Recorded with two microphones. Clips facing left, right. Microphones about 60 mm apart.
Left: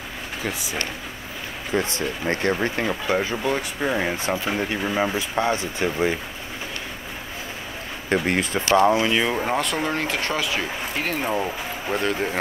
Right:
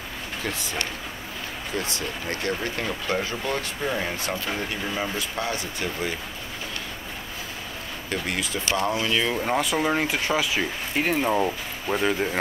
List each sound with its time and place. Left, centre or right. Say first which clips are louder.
0.4 s speech: left 2 dB; centre
1.8 s speech: left 5 dB; left
8.1 s speech: left 7 dB; left
8.9 s speech: left 4 dB; centre
9.6 s speech: right 1 dB; centre